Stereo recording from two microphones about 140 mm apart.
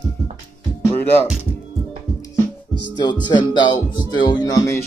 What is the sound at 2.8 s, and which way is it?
Music, 30° left (ahead or behind).